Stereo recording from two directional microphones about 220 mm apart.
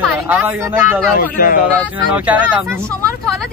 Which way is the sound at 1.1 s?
40° left (ahead or behind).